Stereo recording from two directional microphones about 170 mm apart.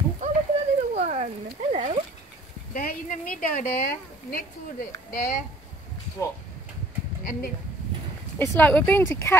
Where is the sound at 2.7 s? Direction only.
55° left (ahead or behind).